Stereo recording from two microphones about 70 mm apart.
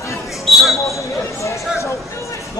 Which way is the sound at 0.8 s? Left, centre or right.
Left.